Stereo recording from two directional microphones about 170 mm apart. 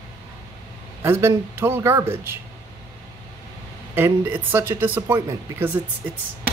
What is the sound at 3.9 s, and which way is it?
Speech, 10° right (ahead or behind).